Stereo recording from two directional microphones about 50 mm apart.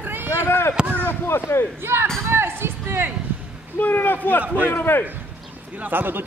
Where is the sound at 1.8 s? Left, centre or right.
Right.